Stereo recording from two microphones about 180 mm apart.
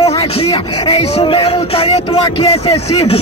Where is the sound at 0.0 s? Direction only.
35° left (ahead or behind).